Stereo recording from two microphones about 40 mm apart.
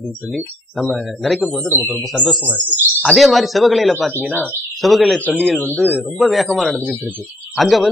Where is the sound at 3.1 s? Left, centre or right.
Centre.